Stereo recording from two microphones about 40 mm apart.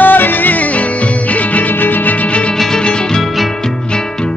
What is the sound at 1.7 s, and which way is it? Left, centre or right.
Music, left.